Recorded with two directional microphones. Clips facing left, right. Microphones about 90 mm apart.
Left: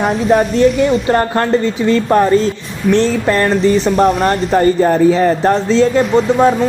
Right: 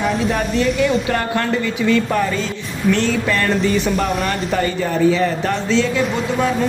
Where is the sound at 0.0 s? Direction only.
40° left (ahead or behind).